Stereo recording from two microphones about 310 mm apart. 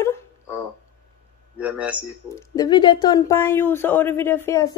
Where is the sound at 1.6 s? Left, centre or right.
Centre.